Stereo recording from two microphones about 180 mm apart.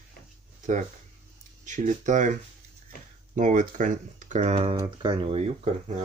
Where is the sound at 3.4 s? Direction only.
45° right (ahead or behind).